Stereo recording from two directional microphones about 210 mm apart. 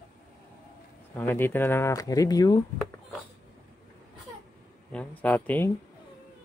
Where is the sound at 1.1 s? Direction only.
10° left (ahead or behind).